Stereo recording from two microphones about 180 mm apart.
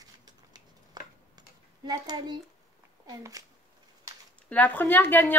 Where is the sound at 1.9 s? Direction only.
25° right (ahead or behind).